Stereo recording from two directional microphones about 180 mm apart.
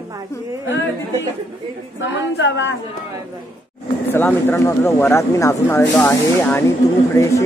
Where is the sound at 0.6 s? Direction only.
90° left.